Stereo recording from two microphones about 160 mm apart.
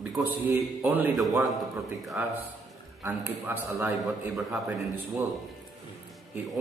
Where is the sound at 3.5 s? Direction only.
15° right (ahead or behind).